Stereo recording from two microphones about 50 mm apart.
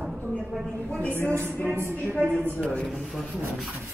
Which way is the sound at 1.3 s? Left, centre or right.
Right.